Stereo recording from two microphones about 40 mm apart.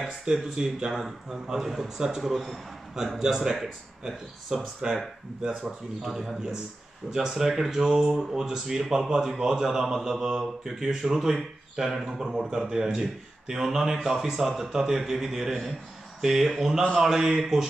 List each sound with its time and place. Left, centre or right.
0.2 s a man's voice: centre
3.2 s a man's voice: centre
6.0 s a man's voice: centre
17.0 s a man's voice: centre